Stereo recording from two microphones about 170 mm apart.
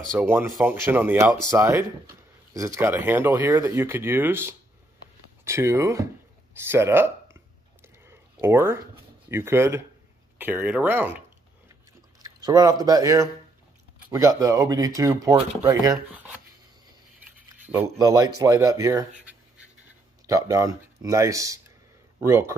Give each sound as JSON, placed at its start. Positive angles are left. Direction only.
{"t": 0.2, "sound": "speech", "side_deg": -10}
{"t": 8.1, "sound": "a sound", "side_deg": -15}
{"t": 9.3, "sound": "speech", "side_deg": -15}
{"t": 12.2, "sound": "speech", "side_deg": -20}
{"t": 17.2, "sound": "speech", "side_deg": -10}